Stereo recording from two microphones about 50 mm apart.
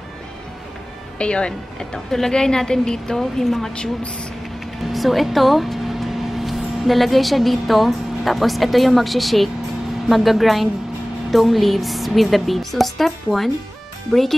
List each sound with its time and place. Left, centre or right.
1.1 s a woman's voice: left; by 3.7 s centre
3.7 s speech: left
4.9 s a woman's voice: centre